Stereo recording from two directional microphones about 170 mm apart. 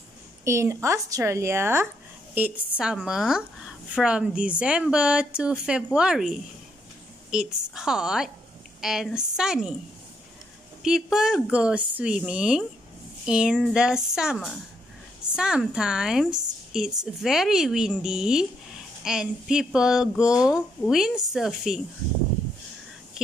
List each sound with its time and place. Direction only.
0.5 s a woman's voice: 15° right (ahead or behind)
10.8 s a woman's voice: 5° right (ahead or behind)